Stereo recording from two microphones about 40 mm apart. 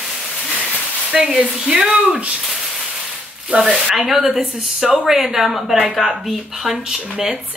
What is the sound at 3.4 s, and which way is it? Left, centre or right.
Speech, right.